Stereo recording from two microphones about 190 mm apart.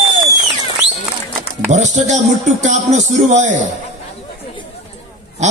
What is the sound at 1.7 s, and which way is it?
Speech, 40° right (ahead or behind).